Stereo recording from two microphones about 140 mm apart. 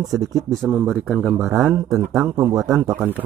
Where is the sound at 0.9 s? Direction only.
5° right (ahead or behind).